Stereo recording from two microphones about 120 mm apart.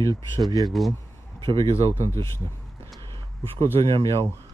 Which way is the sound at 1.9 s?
25° left (ahead or behind).